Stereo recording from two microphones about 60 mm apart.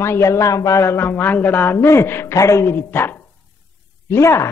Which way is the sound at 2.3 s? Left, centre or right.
Left.